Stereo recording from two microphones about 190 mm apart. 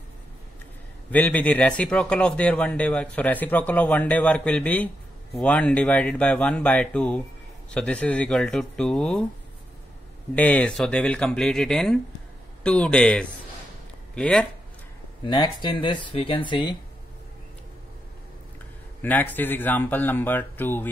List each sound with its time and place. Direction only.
1.1 s speech: 10° left (ahead or behind)
10.3 s speech: 5° left (ahead or behind)
15.2 s speech: 20° left (ahead or behind)
18.9 s speech: 10° left (ahead or behind)